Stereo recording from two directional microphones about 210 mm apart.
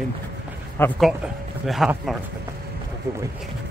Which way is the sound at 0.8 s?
10° left (ahead or behind).